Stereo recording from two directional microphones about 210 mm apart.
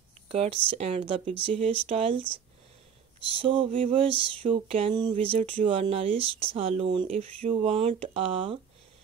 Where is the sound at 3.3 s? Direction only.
25° right (ahead or behind).